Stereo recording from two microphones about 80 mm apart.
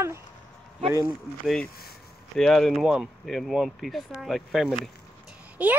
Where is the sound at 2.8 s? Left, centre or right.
Centre.